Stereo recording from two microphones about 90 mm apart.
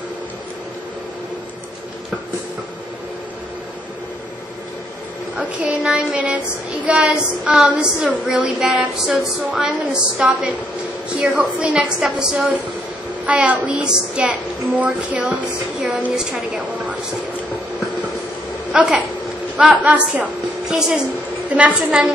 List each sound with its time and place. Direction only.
5.4 s a woman's voice: 15° right (ahead or behind)
6.9 s child singing: 10° right (ahead or behind)
9.5 s a woman's voice: 5° right (ahead or behind)
18.7 s a woman's voice: 10° right (ahead or behind)
20.7 s child singing: 5° right (ahead or behind)
21.5 s a woman's voice: 15° right (ahead or behind)